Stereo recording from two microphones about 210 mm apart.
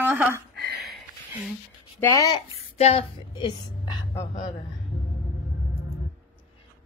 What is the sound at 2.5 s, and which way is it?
A woman's voice, 30° left (ahead or behind).